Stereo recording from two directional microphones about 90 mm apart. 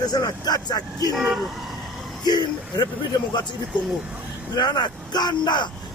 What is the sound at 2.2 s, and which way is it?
Speech, 50° left (ahead or behind).